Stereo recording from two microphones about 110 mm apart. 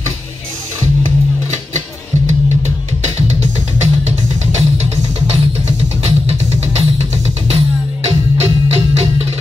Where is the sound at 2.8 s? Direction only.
80° right.